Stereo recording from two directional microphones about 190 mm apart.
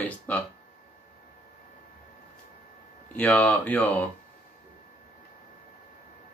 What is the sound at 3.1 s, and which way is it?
Speech, 10° left (ahead or behind).